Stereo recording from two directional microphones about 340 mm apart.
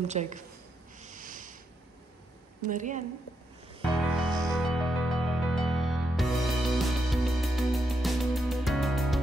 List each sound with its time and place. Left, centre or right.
0.0 s a woman's voice: centre
1.0 s a sound: right
2.6 s a woman's voice: right
3.9 s music: centre